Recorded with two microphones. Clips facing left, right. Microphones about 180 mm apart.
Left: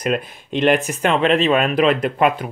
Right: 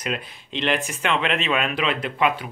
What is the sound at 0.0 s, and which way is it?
Speech, 50° left (ahead or behind).